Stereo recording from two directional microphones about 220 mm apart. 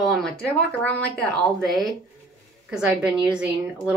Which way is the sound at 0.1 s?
5° left (ahead or behind).